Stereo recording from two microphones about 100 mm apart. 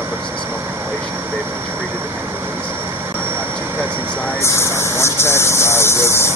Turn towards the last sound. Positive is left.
turn(degrees=25)  # may be behind; listen again after turning